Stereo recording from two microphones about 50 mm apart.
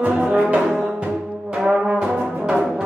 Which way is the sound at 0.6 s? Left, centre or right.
Centre.